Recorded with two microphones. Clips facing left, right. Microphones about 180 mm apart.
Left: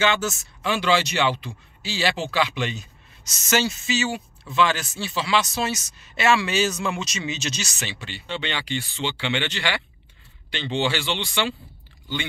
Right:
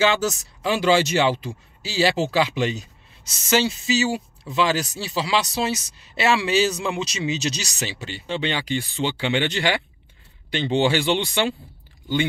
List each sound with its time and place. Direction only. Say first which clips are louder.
0.0 s speech: right 3 dB; 35° right (ahead or behind)